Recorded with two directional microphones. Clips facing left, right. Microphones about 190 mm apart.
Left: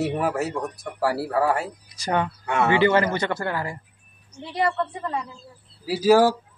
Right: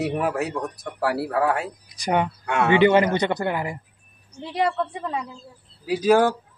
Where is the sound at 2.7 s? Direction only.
20° right (ahead or behind).